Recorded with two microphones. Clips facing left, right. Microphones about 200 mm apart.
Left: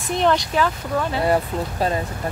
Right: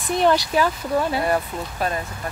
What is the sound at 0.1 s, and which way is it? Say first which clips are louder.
Speech: right 1 dB; 5° right (ahead or behind).